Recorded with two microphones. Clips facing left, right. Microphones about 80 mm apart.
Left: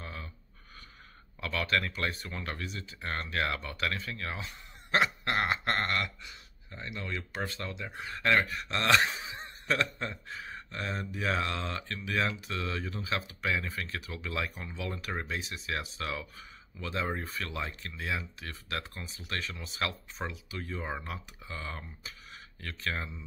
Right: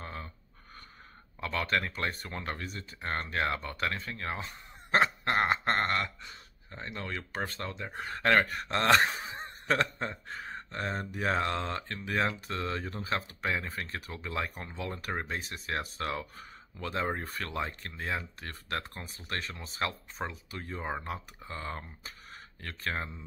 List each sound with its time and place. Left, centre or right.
0.0 s a sound: right
1.4 s speech: right
17.6 s speech: right